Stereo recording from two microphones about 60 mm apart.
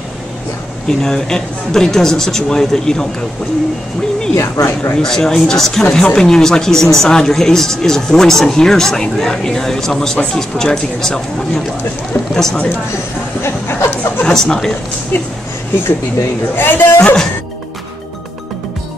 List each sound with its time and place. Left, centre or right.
0.8 s speech: centre
4.4 s speech: left
5.0 s speech: centre
13.4 s speech: left
14.2 s speech: centre
16.5 s a man's voice: left
17.0 s speech: centre